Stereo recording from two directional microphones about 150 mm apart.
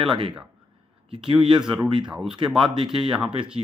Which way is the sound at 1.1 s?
35° right (ahead or behind).